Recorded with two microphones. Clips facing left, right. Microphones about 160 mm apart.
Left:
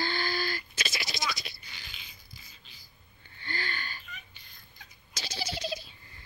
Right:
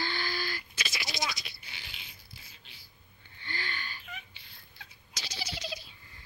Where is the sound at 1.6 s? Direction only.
70° right (ahead or behind).